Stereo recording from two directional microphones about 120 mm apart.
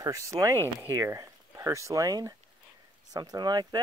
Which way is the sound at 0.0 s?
25° right (ahead or behind).